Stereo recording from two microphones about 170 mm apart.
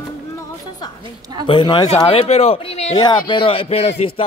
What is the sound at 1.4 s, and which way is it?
Speech, 30° left (ahead or behind).